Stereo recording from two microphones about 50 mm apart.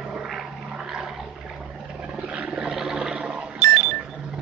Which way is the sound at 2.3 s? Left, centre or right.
Right.